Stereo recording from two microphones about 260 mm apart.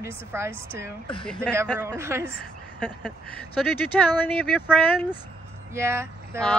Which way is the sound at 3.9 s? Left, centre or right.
Centre.